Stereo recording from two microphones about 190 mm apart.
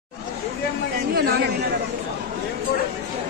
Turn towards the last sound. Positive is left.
turn(degrees=-55)  # may be behind; listen again after turning